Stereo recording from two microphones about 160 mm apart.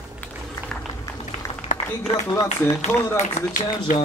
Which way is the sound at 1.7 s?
50° left (ahead or behind).